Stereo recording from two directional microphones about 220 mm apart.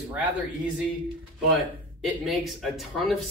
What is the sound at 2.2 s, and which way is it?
Speech, centre (ahead or behind).